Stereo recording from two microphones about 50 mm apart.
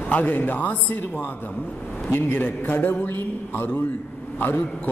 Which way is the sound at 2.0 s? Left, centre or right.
Left.